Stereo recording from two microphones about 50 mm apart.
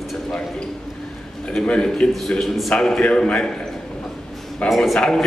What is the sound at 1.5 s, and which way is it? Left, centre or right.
A man's voice, centre.